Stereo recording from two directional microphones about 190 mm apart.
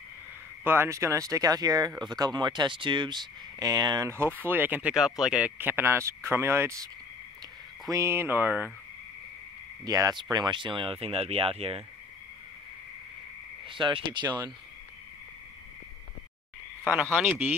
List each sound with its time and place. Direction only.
0.7 s speech: 15° right (ahead or behind)
7.9 s speech: 15° right (ahead or behind)
9.8 s speech: 20° right (ahead or behind)
13.7 s speech: 25° right (ahead or behind)
16.9 s speech: 10° right (ahead or behind)